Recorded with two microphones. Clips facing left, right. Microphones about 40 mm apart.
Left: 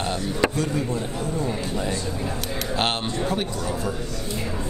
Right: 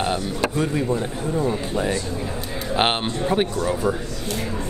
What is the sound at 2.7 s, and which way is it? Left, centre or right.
Speech, centre.